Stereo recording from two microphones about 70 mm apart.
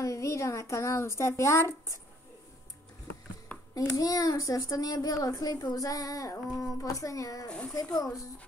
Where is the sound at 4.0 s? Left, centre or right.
Left.